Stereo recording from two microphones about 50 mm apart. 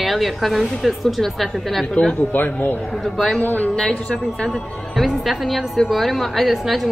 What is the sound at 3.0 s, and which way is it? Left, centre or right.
Speech, centre.